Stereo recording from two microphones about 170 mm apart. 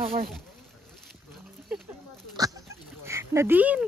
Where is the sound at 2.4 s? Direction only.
20° right (ahead or behind).